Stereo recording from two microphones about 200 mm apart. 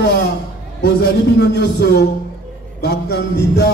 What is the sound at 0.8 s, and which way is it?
A man's voice, 55° left (ahead or behind).